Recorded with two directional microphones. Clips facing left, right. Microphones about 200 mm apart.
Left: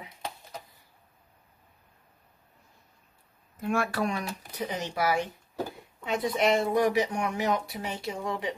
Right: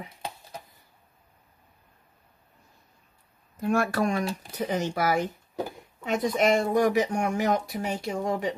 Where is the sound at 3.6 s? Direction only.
45° right (ahead or behind).